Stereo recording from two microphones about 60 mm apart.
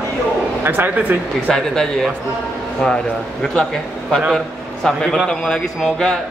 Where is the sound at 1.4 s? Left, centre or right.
Centre.